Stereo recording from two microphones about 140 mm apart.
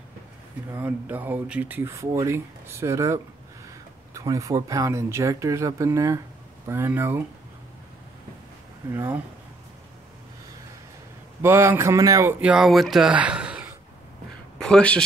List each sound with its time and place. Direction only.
0.7 s speech: 15° right (ahead or behind)
8.9 s speech: 15° right (ahead or behind)
11.4 s speech: 20° right (ahead or behind)
12.4 s speech: 5° right (ahead or behind)
14.6 s speech: 5° left (ahead or behind)